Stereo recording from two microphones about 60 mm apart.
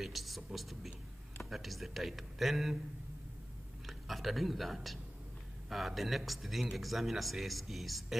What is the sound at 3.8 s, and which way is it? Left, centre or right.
Speech, centre.